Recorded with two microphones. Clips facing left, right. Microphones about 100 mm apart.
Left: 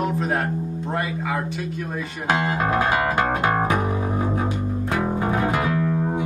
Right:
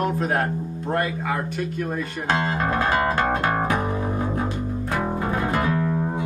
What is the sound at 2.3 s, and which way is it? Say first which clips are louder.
Music: left 2 dB; 15° left (ahead or behind).